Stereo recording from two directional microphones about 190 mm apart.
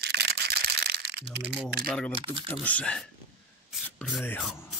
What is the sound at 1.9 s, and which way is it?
Speech, 5° left (ahead or behind).